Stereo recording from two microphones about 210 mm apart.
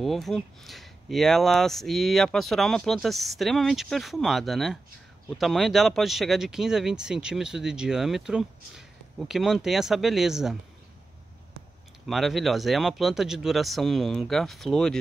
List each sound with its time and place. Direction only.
0.0 s speech: centre (ahead or behind)
12.1 s speech: centre (ahead or behind)